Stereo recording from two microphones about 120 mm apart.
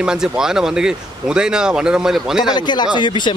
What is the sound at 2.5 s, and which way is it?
Speech, 40° left (ahead or behind).